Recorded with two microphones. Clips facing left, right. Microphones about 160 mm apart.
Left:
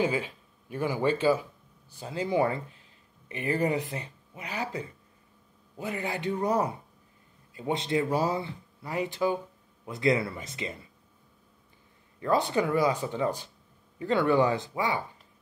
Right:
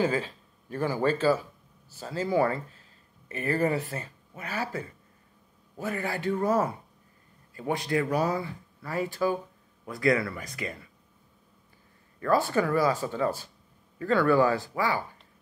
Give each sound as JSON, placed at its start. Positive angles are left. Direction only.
{"t": 0.0, "sound": "speech", "side_deg": 10}
{"t": 12.2, "sound": "speech", "side_deg": 20}